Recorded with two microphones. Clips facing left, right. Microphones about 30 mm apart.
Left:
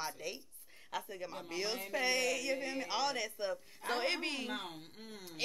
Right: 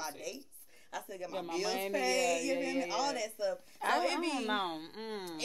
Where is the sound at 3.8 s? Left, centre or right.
Right.